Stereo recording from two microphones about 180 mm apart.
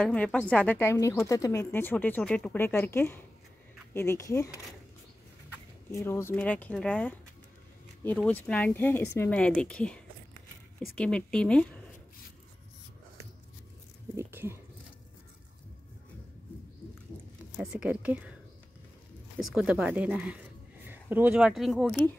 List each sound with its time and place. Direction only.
0.0 s a woman's voice: 5° left (ahead or behind)
5.9 s a woman's voice: 15° left (ahead or behind)
14.1 s speech: 15° right (ahead or behind)
17.6 s speech: 10° right (ahead or behind)
19.4 s a woman's voice: 5° right (ahead or behind)
21.8 s a woman's voice: 10° left (ahead or behind)